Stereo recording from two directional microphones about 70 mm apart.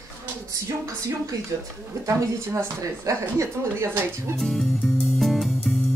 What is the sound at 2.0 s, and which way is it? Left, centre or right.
A woman's voice, right.